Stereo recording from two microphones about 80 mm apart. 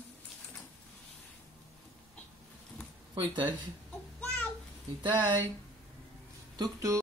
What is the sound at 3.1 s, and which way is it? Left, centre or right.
Speech, right.